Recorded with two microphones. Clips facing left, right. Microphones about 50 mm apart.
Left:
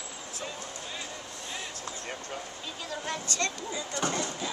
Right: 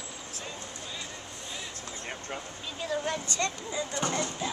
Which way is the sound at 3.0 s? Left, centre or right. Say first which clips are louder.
Right 1 dB; right.